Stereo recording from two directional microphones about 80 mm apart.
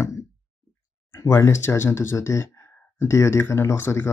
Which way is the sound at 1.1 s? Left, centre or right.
Left.